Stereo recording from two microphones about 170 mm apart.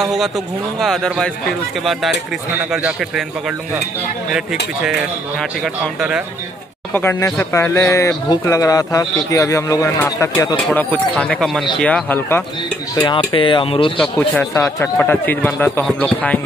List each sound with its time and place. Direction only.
0.0 s a man's voice: centre (ahead or behind)
2.7 s a man's voice: centre (ahead or behind)
5.9 s a man's voice: 5° right (ahead or behind)
6.9 s speech: 10° left (ahead or behind)
12.9 s speech: 25° left (ahead or behind)
13.9 s a man's voice: 5° left (ahead or behind)